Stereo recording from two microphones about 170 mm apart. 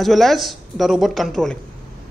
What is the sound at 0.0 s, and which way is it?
Speech, centre (ahead or behind).